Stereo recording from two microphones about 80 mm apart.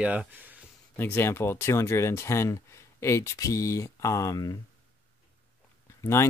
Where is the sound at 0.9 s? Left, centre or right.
Left.